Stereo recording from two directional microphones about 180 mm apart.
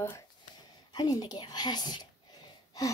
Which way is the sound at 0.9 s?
20° left (ahead or behind).